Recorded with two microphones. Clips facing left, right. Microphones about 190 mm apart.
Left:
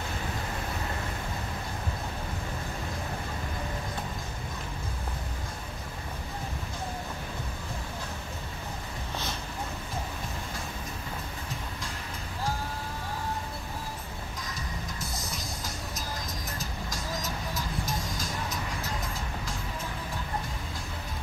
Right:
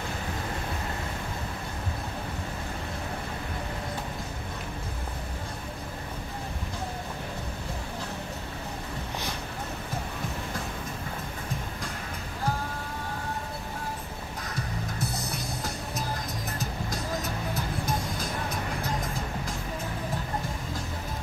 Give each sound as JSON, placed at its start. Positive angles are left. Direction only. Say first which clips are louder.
{"t": 14.5, "sound": "music", "louder": "right 4 dB", "side_deg": -65}
{"t": 16.5, "sound": "vehicle", "louder": "right 4 dB", "side_deg": -60}